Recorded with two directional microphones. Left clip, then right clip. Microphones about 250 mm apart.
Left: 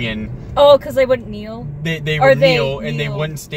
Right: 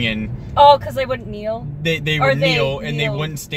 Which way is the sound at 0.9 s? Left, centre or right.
Centre.